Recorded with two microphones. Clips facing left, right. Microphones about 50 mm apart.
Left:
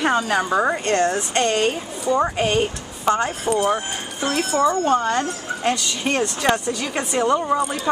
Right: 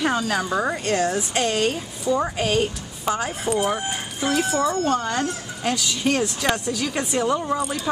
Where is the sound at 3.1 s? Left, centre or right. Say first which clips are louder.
Left 4 dB; centre.